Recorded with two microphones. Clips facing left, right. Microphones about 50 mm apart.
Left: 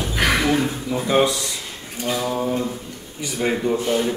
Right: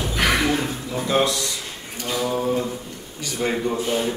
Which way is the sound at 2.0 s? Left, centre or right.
Centre.